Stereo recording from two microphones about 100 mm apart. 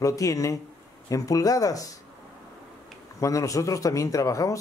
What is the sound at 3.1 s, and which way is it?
Speech, 30° left (ahead or behind).